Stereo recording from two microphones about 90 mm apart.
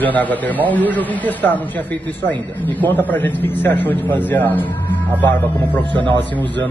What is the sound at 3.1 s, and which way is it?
A man's voice, 20° left (ahead or behind).